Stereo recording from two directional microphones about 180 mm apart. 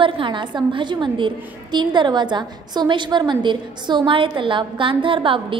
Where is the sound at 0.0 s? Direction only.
25° right (ahead or behind).